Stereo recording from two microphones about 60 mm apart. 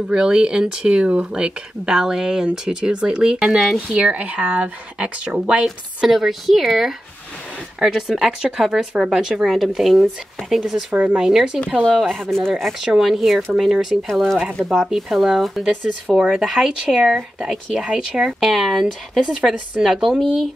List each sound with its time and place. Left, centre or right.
0.1 s speech: centre
4.0 s speech: right
6.0 s speech: centre
11.9 s speech: centre
12.8 s speech: centre
14.0 s speech: centre
16.1 s speech: centre
16.3 s speech: centre